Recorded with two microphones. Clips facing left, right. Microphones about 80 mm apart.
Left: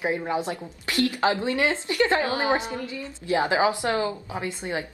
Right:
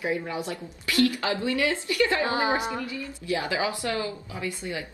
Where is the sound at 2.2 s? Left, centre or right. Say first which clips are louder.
Even; right.